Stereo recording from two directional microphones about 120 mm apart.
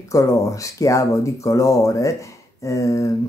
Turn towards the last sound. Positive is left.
turn(degrees=25)  # may be behind; listen again after turning